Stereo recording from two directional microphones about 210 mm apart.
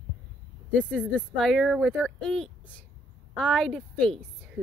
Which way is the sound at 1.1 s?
Centre (ahead or behind).